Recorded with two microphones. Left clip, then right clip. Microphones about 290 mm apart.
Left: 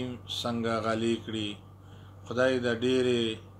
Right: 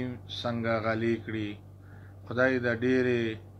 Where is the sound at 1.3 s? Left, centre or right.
Left.